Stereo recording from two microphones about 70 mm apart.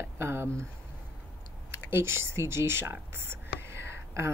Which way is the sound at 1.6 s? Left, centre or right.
Right.